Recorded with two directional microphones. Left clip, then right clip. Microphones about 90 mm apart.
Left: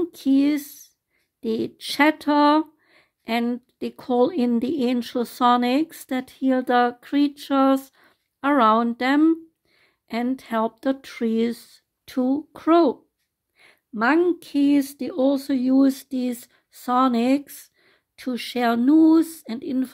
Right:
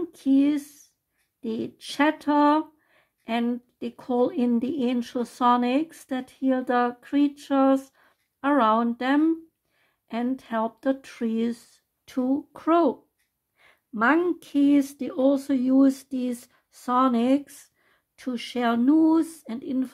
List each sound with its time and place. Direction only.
0.0 s speech: 35° left (ahead or behind)
13.6 s a sound: 20° left (ahead or behind)
14.4 s speech: 15° left (ahead or behind); by 19.9 s 35° left (ahead or behind)